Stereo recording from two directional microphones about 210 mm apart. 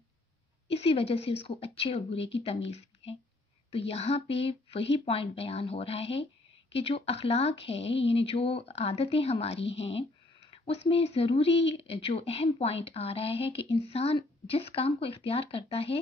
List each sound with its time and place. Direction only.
0.7 s a woman's voice: 25° left (ahead or behind)